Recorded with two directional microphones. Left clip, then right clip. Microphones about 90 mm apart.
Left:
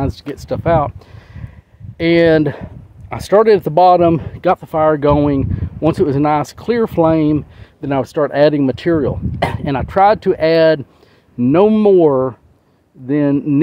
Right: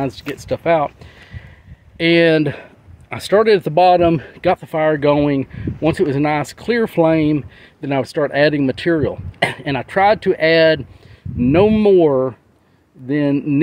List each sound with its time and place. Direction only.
0.0 s speech: 20° left (ahead or behind)
2.0 s speech: 20° left (ahead or behind)